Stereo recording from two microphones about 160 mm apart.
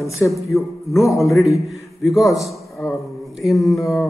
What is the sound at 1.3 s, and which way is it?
Speech, 20° left (ahead or behind).